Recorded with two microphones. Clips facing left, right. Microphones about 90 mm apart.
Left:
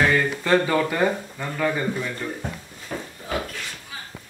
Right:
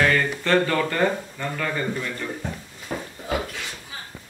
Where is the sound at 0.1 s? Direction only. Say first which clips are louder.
Left 1 dB; 15° left (ahead or behind).